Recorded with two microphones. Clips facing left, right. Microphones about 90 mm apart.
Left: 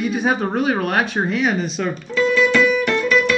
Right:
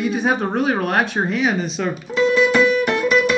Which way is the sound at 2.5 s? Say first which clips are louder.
Right 1 dB; 30° right (ahead or behind).